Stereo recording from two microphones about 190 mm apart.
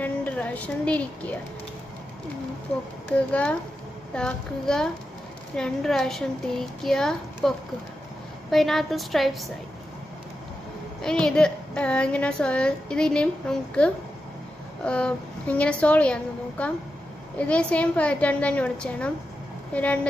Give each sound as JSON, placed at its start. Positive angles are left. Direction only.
{"t": 0.0, "sound": "a woman's voice", "side_deg": 10}
{"t": 3.3, "sound": "a woman's voice", "side_deg": 5}
{"t": 11.0, "sound": "a woman's voice", "side_deg": 5}